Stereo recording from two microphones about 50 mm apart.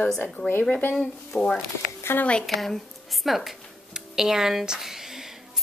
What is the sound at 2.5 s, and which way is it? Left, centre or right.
A woman's voice, centre.